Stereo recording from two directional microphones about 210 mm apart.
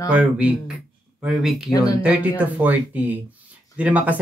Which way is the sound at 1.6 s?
15° left (ahead or behind).